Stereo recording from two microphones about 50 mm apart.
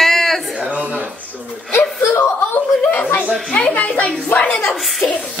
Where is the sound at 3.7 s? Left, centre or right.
Left.